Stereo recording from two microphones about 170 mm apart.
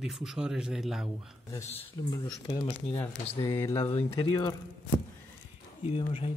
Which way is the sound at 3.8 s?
35° left (ahead or behind).